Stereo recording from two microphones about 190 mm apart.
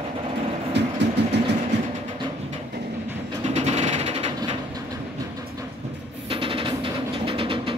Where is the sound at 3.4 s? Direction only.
35° right (ahead or behind).